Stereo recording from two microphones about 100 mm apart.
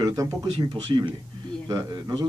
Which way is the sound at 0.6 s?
55° right (ahead or behind).